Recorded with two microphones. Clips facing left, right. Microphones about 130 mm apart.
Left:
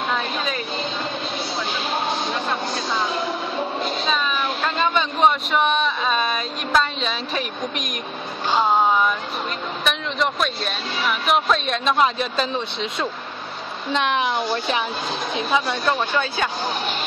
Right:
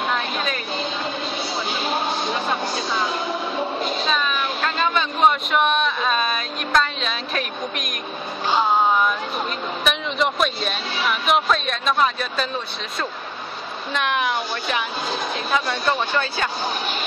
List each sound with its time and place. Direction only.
4.0 s a sound: 5° left (ahead or behind)
9.8 s speech: 5° right (ahead or behind)
11.8 s a woman's voice: 25° left (ahead or behind)
13.9 s a woman's voice: 30° left (ahead or behind)
15.8 s speech: centre (ahead or behind)